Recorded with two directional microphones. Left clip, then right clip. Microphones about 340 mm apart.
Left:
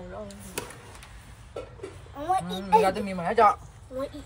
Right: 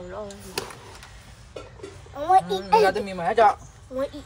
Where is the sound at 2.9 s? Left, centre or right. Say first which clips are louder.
Right 3 dB; right.